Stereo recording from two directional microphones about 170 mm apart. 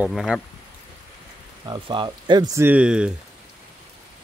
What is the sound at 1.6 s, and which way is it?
Speech, 25° right (ahead or behind).